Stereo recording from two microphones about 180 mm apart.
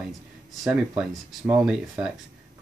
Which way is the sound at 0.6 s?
5° right (ahead or behind).